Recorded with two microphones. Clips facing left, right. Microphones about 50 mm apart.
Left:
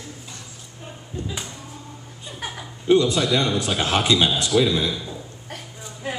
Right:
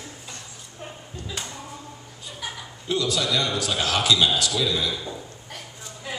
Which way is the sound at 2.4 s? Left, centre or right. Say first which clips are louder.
Left 8 dB; left.